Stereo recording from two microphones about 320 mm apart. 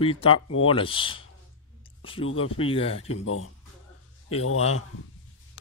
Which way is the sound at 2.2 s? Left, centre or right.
Left.